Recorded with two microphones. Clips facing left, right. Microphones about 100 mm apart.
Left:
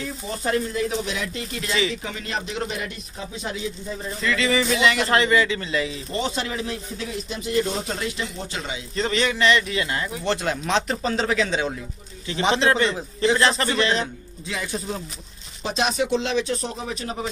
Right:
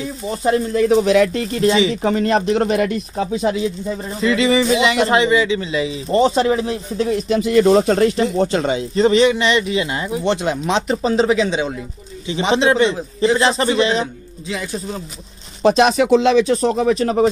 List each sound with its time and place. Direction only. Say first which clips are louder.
0.7 s speech: right 13 dB; 70° right (ahead or behind); by 3.5 s 90° right
4.2 s speech: right 7 dB; 25° right (ahead or behind)
6.1 s speech: right 13 dB; 35° right (ahead or behind)
7.2 s speech: right 11 dB; 85° right; by 8.8 s 45° right (ahead or behind)
8.9 s speech: right 10 dB; 25° right (ahead or behind)
12.9 s a man's voice: right 5 dB; 5° right (ahead or behind)
13.4 s speech: right 5 dB; 20° right (ahead or behind)
15.6 s speech: right 10 dB; 80° right
16.7 s speech: right 14 dB; 70° right (ahead or behind)